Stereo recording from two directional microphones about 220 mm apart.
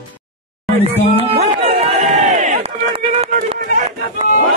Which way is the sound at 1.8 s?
30° right (ahead or behind).